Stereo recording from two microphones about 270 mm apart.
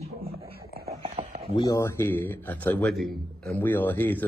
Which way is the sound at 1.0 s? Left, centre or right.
Centre.